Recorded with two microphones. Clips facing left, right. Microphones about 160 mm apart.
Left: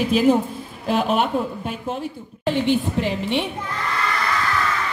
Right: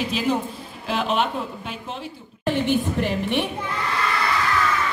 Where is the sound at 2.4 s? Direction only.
15° left (ahead or behind).